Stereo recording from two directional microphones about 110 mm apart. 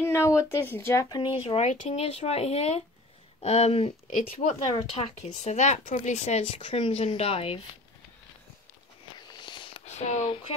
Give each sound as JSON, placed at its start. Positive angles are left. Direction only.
{"t": 0.0, "sound": "speech", "side_deg": 25}
{"t": 1.0, "sound": "speech", "side_deg": 45}
{"t": 1.6, "sound": "speech", "side_deg": 90}
{"t": 9.3, "sound": "a sound", "side_deg": 45}
{"t": 9.8, "sound": "speech", "side_deg": 90}